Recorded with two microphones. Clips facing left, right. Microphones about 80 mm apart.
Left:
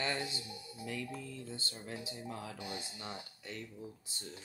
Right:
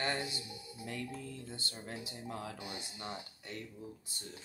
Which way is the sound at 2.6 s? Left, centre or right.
Centre.